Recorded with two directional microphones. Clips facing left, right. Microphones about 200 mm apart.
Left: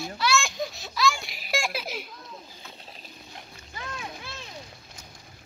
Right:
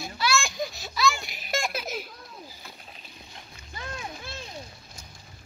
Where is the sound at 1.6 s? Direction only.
Centre (ahead or behind).